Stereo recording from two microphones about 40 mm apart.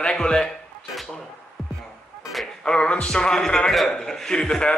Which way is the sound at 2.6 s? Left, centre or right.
Left.